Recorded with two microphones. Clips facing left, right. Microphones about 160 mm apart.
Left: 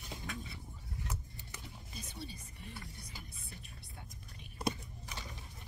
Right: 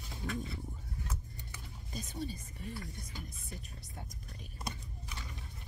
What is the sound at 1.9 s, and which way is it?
Speech, 45° right (ahead or behind).